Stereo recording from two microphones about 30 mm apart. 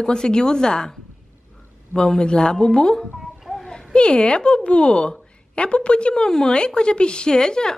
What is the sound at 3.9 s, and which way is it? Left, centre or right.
A woman's voice, left.